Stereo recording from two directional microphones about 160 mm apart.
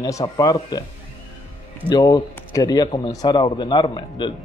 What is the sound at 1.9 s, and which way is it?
Speech, 25° left (ahead or behind).